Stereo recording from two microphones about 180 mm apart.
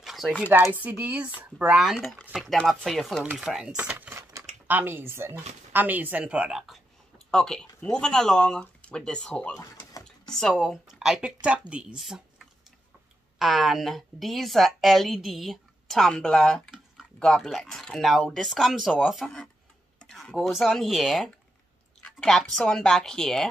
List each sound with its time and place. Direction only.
0.0 s a sound: centre (ahead or behind)
0.5 s speech: 10° right (ahead or behind); by 9.5 s 5° left (ahead or behind)
9.6 s mechanisms: 20° left (ahead or behind)
10.3 s speech: centre (ahead or behind)